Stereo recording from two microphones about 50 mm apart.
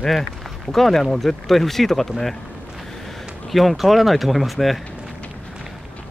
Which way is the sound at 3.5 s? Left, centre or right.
Centre.